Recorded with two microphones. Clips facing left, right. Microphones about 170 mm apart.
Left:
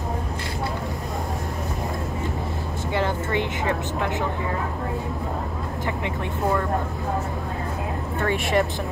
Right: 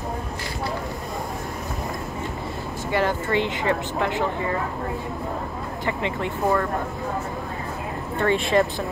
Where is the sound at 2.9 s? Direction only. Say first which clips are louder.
Right 2 dB; 20° left (ahead or behind).